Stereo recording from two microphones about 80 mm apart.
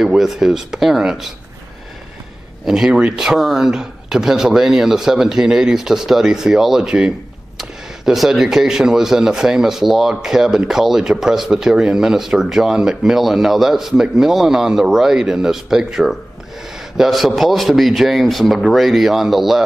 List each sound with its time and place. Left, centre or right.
0.0 s speech: centre
2.6 s speech: centre